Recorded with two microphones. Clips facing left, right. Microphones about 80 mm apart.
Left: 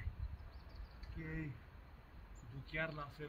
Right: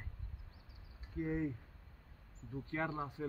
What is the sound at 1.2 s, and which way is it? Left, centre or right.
Speech, right.